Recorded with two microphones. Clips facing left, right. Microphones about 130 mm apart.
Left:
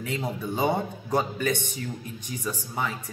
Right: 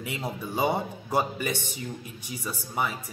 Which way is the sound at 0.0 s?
10° right (ahead or behind).